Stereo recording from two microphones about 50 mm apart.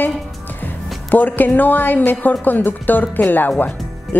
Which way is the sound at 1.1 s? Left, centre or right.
Left.